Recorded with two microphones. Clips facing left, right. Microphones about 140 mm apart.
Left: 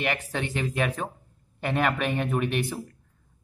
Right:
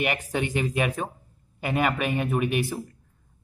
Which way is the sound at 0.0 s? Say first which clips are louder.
Right 2 dB; 15° right (ahead or behind).